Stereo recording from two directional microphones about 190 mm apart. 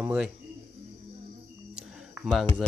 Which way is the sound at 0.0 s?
5° right (ahead or behind).